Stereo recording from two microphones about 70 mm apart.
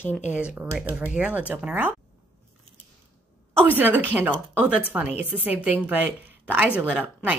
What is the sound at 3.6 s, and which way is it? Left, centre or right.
A woman's voice, right.